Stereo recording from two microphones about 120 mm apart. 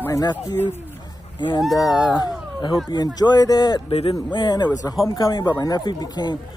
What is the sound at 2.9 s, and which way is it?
Speech, 35° left (ahead or behind).